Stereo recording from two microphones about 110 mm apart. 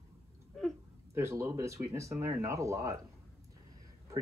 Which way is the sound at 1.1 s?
25° right (ahead or behind).